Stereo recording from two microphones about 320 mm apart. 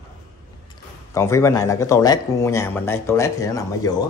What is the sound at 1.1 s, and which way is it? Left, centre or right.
Speech, centre.